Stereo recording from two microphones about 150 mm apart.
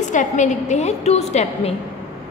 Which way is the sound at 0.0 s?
55° left (ahead or behind).